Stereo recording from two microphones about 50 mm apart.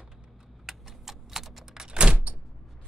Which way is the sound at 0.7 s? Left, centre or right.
Centre.